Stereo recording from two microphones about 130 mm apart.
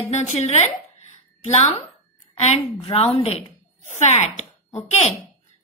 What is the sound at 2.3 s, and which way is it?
A woman's voice, 55° left (ahead or behind).